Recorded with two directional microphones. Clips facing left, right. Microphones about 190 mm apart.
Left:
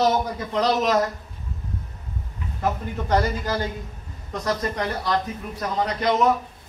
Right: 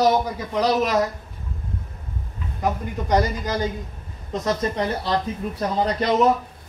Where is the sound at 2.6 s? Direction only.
15° right (ahead or behind).